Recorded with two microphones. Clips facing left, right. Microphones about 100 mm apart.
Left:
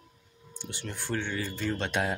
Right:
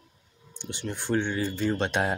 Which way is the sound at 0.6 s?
20° right (ahead or behind).